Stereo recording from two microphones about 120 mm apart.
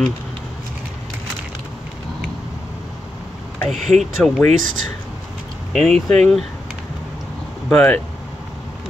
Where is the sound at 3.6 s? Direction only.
Centre (ahead or behind).